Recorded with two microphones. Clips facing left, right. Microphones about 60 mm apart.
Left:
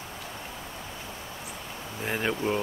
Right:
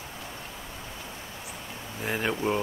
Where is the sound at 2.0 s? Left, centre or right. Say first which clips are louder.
Even; centre.